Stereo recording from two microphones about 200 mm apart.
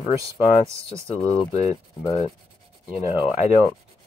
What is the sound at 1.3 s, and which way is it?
Rub, 30° left (ahead or behind).